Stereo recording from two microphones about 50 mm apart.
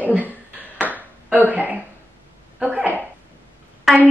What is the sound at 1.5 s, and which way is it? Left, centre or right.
Speech, right.